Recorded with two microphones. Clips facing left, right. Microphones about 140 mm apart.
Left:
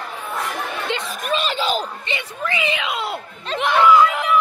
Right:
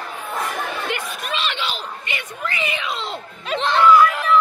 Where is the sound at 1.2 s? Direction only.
45° left (ahead or behind).